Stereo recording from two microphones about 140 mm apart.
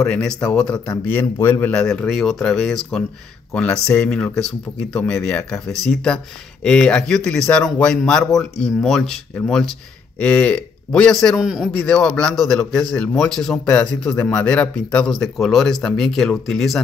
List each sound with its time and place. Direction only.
0.1 s a man's voice: 5° left (ahead or behind)
6.6 s a man's voice: 5° left (ahead or behind)